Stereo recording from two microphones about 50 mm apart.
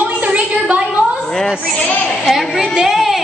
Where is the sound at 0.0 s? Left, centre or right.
Right.